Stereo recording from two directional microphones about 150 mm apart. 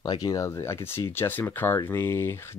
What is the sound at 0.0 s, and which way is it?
Speech, 25° left (ahead or behind).